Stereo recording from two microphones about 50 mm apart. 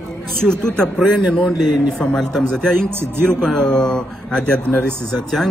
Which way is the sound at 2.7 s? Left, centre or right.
Right.